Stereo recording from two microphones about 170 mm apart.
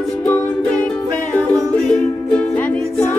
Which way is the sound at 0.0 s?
5° left (ahead or behind).